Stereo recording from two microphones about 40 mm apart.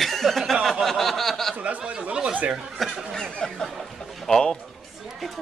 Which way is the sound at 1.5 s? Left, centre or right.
Right.